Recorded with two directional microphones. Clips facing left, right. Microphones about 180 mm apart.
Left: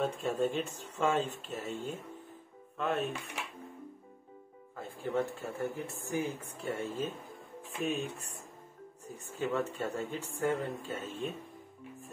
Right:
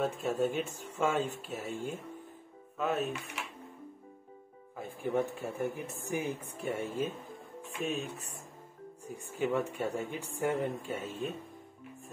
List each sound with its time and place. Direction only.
0.0 s speech: 10° right (ahead or behind)
4.7 s speech: 15° right (ahead or behind)
7.8 s speech: centre (ahead or behind)
9.0 s speech: 10° right (ahead or behind)